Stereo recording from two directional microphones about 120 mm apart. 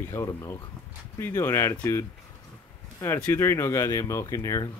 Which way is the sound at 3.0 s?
20° left (ahead or behind).